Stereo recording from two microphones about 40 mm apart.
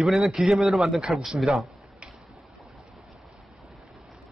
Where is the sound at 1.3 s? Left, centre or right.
Centre.